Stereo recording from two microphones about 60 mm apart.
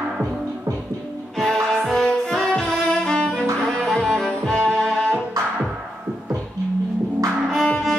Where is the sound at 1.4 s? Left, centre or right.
Centre.